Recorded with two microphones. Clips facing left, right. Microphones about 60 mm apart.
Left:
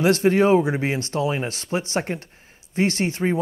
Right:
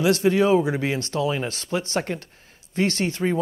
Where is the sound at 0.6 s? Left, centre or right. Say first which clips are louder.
Left 1 dB; left.